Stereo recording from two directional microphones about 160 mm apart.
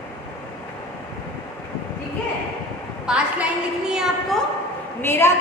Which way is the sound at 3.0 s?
5° right (ahead or behind).